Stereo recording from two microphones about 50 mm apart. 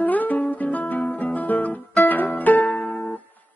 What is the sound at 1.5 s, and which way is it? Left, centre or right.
Music, left.